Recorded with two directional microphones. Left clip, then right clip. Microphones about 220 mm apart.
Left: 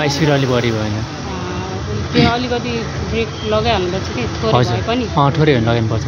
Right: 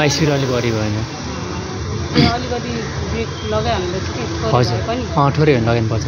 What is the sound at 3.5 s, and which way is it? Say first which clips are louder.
Speech: left 3 dB; 45° left (ahead or behind).